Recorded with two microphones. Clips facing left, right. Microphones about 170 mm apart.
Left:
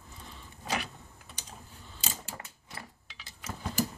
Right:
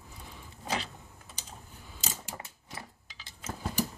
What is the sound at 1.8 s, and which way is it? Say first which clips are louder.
Mechanisms: even; 15° right (ahead or behind).